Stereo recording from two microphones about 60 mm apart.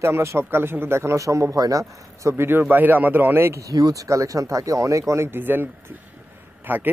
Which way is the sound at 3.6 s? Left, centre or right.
Right.